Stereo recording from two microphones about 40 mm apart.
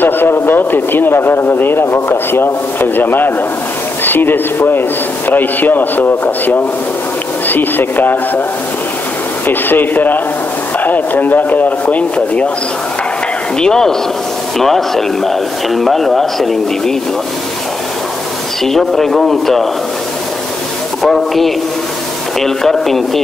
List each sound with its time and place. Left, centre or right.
0.0 s a man's voice: left
9.5 s speech: left
13.6 s speech: centre
18.6 s speech: centre
21.0 s a man's voice: centre